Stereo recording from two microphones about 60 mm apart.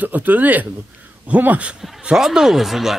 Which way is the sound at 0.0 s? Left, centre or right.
Right.